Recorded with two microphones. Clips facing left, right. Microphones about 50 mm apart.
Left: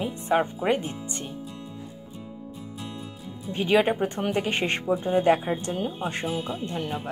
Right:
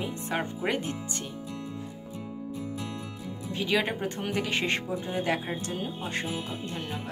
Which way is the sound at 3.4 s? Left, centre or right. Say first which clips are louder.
Left 6 dB; left.